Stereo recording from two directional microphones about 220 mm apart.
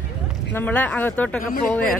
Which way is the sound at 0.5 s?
10° left (ahead or behind).